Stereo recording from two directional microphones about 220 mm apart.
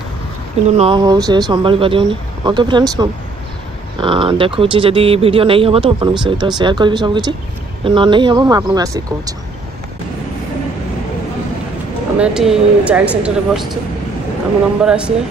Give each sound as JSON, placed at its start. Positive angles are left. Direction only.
{"t": 0.7, "sound": "speech", "side_deg": -25}
{"t": 12.2, "sound": "speech", "side_deg": -5}
{"t": 14.8, "sound": "speech", "side_deg": -5}